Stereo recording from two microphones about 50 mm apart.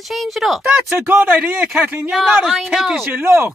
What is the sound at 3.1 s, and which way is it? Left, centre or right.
Speech, right.